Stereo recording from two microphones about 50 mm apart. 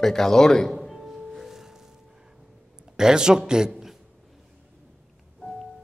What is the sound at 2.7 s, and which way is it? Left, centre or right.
Speech, centre.